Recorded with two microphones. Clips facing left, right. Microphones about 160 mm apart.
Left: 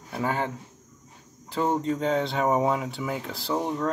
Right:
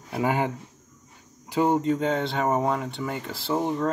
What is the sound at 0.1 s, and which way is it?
Speech, 15° right (ahead or behind).